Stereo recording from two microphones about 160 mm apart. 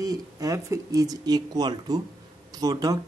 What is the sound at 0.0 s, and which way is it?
Speech, 25° right (ahead or behind).